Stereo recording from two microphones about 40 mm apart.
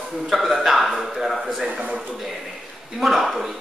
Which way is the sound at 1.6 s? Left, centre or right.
Right.